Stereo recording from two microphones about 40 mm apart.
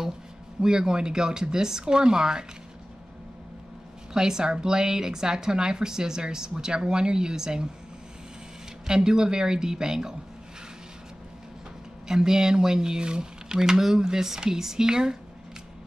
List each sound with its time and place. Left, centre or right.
0.6 s a woman's voice: centre
4.1 s a woman's voice: centre
8.8 s a woman's voice: centre
12.1 s a woman's voice: centre